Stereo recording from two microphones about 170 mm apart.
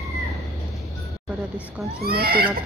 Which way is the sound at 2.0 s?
65° right (ahead or behind).